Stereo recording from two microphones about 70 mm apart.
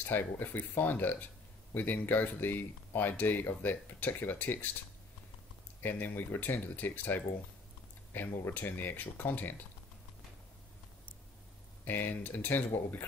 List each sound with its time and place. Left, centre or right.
0.0 s speech: left
5.8 s speech: left
11.8 s speech: left